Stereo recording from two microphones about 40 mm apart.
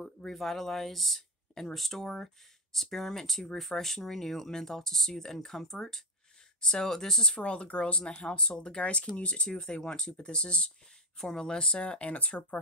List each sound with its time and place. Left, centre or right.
0.0 s speech: centre
7.3 s speech: left